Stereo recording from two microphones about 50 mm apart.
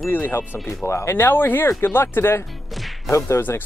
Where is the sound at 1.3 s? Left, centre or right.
Left.